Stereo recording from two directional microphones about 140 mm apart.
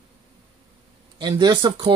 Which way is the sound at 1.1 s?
30° right (ahead or behind).